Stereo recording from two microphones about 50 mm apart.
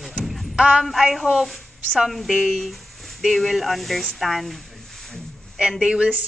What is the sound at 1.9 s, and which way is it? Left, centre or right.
Speech, centre.